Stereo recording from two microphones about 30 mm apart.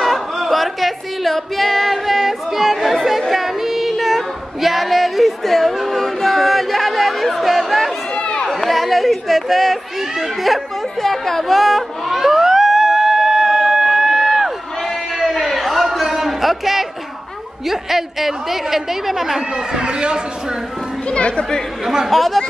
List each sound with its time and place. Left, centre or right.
0.0 s music: centre
3.2 s female singing: centre
8.2 s chatter: left
8.5 s speech: centre
11.0 s speech: centre
11.4 s music: centre
15.1 s a sound: centre
17.6 s a woman's voice: centre
19.8 s a man's voice: right
21.1 s speech: left
21.8 s a woman's voice: centre
22.1 s chatter: centre